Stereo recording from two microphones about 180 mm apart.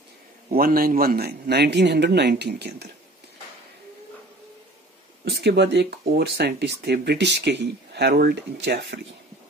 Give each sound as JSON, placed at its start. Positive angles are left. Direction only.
{"t": 0.5, "sound": "a man's voice", "side_deg": -55}
{"t": 5.3, "sound": "speech", "side_deg": -65}